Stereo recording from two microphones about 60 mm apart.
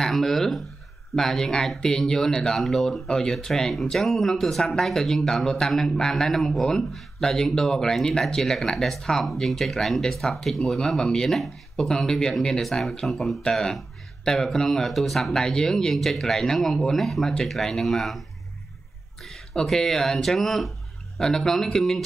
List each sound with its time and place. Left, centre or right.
0.0 s speech: centre
19.2 s speech: centre